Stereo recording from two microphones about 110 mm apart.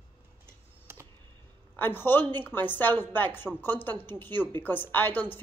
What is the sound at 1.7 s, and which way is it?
A woman's voice, 20° left (ahead or behind).